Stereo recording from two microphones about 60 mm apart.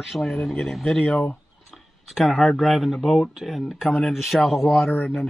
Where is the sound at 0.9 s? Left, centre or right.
Left.